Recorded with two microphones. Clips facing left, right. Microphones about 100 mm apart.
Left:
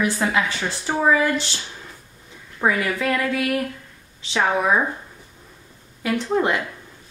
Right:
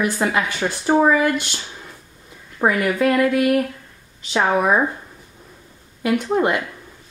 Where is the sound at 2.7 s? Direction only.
10° right (ahead or behind).